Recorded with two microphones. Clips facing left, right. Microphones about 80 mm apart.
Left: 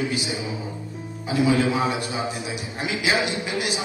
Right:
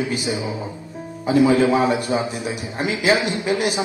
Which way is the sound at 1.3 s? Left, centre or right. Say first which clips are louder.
Right 5 dB; right.